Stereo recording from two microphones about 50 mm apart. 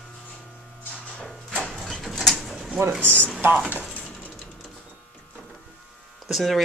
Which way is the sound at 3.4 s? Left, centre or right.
Right.